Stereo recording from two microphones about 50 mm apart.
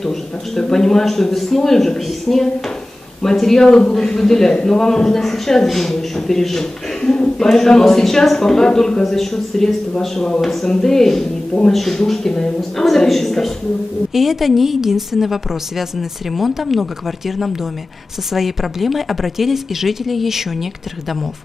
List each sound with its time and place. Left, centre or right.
0.0 s a man's voice: centre
18.3 s a woman's voice: centre